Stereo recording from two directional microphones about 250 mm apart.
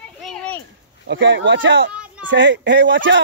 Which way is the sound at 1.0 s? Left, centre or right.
Right.